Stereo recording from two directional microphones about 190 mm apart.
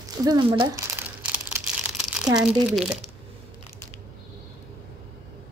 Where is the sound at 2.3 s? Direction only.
5° right (ahead or behind).